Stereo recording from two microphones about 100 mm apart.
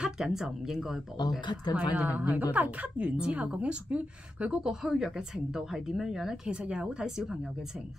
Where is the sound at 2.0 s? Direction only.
15° right (ahead or behind).